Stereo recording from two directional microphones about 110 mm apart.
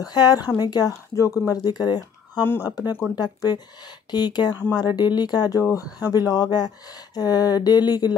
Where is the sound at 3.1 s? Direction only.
40° left (ahead or behind).